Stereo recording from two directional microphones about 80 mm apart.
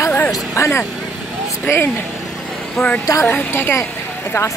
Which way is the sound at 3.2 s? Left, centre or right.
Left.